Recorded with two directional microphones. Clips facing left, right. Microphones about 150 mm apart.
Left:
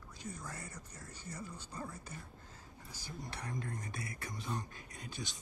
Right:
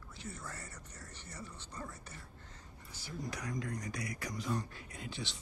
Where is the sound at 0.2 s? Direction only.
15° left (ahead or behind).